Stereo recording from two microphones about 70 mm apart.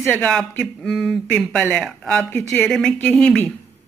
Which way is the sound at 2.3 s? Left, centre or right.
Left.